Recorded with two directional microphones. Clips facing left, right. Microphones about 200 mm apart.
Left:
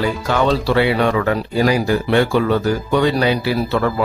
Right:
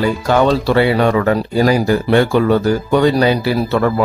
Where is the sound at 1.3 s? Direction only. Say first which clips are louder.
Right 3 dB; 40° right (ahead or behind).